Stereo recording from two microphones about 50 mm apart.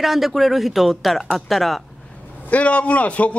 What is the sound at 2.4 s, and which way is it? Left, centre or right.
Speech, left.